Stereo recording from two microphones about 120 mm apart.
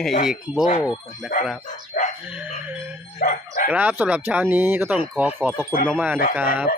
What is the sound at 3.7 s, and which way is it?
Speech, 10° right (ahead or behind).